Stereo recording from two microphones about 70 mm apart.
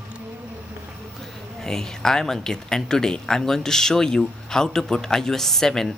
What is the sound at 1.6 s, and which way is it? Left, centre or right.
Speech, centre.